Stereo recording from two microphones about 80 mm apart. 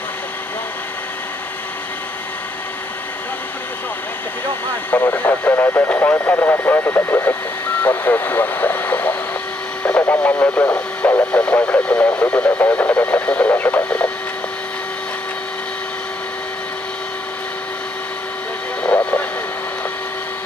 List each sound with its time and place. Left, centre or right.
4.9 s speech: left
18.8 s vehicle: centre